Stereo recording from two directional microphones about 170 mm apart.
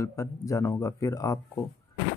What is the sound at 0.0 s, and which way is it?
Speech, 20° left (ahead or behind).